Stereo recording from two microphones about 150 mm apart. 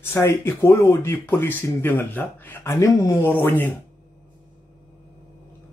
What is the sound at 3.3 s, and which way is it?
Speech, 10° left (ahead or behind).